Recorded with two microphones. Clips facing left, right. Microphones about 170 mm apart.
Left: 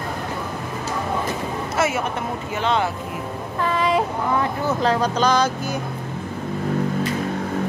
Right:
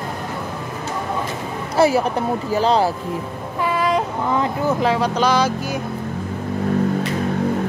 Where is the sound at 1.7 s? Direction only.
35° right (ahead or behind).